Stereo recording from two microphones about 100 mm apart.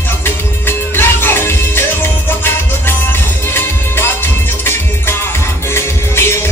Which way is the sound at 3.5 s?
25° left (ahead or behind).